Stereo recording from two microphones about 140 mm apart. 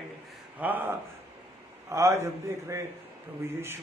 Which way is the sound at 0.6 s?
10° right (ahead or behind).